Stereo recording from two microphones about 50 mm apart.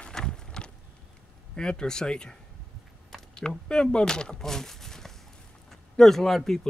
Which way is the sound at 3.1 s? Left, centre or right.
Centre.